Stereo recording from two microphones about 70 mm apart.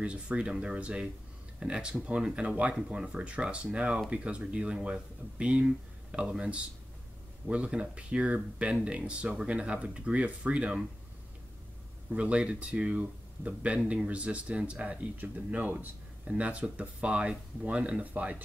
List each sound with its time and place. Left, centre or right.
0.0 s speech: centre
12.1 s speech: centre